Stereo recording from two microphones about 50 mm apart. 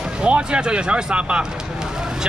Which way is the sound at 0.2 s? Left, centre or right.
Right.